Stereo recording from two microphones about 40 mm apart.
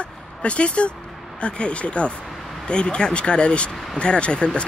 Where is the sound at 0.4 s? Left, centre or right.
Left.